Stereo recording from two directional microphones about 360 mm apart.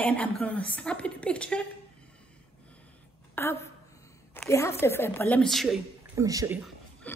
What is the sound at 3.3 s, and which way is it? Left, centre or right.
A woman's voice, centre.